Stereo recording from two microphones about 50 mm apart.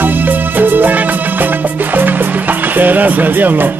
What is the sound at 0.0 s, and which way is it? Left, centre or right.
Music, right.